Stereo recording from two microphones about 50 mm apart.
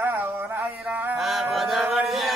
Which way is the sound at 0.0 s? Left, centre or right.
Right.